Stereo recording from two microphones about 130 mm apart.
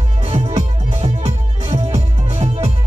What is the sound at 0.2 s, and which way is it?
Music, 50° right (ahead or behind).